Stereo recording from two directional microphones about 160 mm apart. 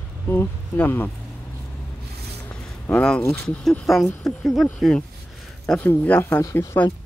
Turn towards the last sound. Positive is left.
turn(degrees=15)  # may be behind; listen again after turning